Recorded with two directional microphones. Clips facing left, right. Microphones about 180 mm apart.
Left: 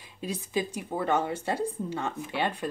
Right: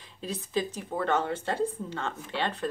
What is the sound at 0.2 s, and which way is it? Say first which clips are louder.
Speech: even; 15° left (ahead or behind).